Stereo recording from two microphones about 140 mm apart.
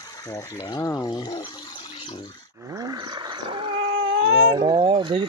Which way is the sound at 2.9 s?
30° right (ahead or behind).